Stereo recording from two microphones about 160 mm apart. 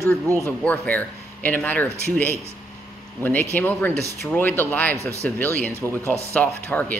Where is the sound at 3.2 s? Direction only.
10° left (ahead or behind).